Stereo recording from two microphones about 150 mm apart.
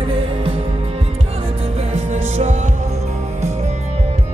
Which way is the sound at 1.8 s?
45° right (ahead or behind).